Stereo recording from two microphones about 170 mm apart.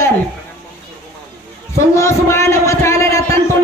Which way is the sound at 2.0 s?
15° left (ahead or behind).